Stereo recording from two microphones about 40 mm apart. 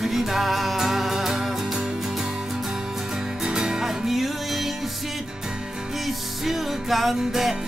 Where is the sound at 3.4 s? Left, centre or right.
Centre.